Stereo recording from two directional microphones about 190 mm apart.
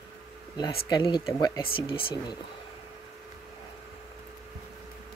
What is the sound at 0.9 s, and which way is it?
Speech, 20° left (ahead or behind).